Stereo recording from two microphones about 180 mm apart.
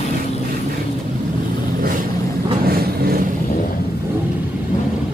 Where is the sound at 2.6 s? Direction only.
55° right (ahead or behind).